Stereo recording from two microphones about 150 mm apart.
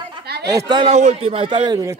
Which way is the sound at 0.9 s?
50° right (ahead or behind).